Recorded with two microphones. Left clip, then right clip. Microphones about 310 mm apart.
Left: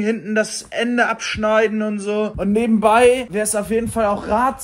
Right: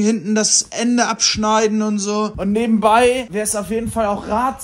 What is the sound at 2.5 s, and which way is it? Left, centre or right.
A man's voice, centre.